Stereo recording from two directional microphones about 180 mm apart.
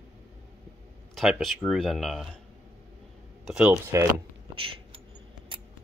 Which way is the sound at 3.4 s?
5° right (ahead or behind).